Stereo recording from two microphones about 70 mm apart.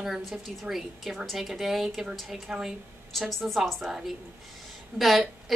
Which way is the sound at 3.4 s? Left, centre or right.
Centre.